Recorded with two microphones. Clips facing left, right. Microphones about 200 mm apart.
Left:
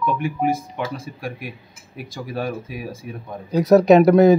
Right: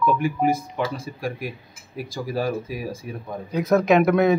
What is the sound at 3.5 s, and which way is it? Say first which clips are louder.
Speech: left 6 dB; 40° left (ahead or behind).